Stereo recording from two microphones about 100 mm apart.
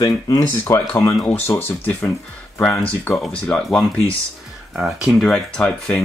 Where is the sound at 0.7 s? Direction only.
20° left (ahead or behind).